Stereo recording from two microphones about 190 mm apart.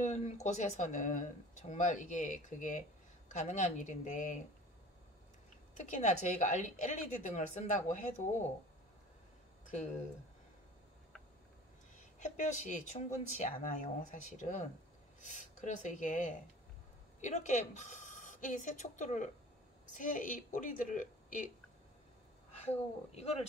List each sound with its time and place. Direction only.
0.0 s speech: 40° left (ahead or behind)
5.8 s speech: 40° left (ahead or behind)
12.2 s a woman's voice: 40° left (ahead or behind)
22.6 s speech: 35° left (ahead or behind)